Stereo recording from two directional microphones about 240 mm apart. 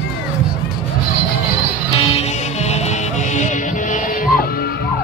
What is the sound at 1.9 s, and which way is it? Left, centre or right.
Music, left.